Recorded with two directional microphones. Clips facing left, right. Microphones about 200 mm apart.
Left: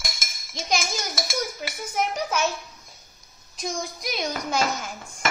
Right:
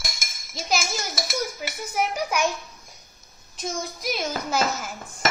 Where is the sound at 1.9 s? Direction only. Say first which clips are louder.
Right 1 dB; 10° right (ahead or behind).